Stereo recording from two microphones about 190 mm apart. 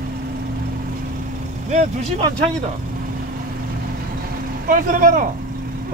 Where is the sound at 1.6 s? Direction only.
40° right (ahead or behind).